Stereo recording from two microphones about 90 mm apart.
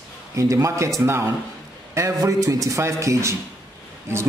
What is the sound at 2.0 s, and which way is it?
A man's voice, 35° right (ahead or behind).